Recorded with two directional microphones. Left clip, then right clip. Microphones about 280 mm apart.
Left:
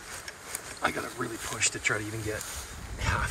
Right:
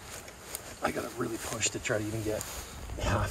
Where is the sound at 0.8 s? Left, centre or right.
Centre.